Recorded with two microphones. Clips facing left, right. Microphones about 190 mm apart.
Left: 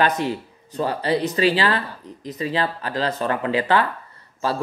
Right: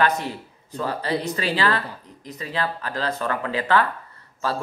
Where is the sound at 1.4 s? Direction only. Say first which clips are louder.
Left 4 dB; 20° left (ahead or behind).